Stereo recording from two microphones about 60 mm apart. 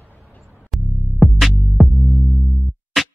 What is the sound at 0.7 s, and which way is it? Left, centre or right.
Music, centre.